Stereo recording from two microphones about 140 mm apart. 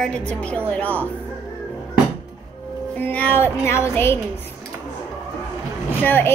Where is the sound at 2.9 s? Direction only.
10° left (ahead or behind).